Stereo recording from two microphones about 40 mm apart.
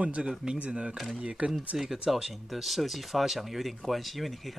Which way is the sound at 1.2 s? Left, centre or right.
Right.